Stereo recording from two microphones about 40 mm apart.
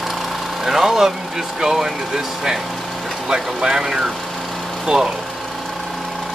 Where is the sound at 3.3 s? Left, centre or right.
Centre.